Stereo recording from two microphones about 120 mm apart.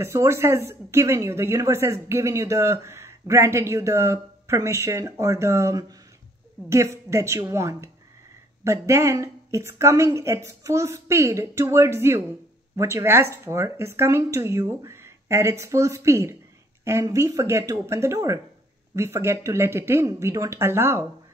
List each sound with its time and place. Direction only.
0.0 s speech: 20° right (ahead or behind)